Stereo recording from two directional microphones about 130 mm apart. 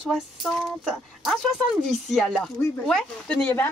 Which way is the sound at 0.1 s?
Centre (ahead or behind).